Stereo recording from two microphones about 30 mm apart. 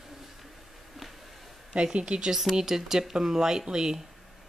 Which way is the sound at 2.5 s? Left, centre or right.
Centre.